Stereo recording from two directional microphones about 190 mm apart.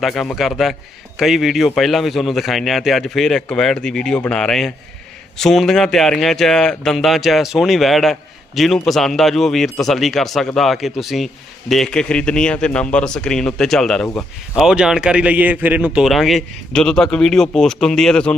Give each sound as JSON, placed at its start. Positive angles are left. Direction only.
{"t": 0.0, "sound": "a man's voice", "side_deg": 0}